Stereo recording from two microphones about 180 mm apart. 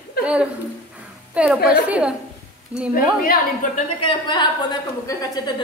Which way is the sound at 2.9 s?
55° left (ahead or behind).